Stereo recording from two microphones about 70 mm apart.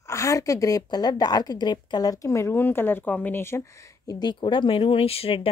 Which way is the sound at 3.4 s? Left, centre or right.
Left.